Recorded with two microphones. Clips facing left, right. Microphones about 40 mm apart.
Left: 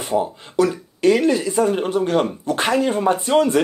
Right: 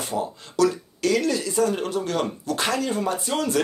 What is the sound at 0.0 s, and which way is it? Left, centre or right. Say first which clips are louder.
Speech: left 6 dB; left.